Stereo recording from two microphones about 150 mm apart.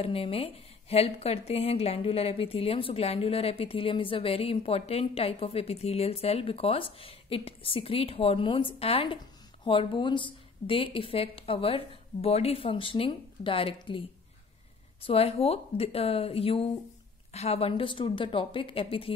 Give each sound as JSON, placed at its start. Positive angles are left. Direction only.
{"t": 0.0, "sound": "speech", "side_deg": 40}